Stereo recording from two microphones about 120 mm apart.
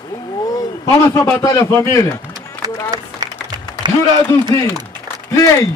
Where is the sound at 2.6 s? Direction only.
35° right (ahead or behind).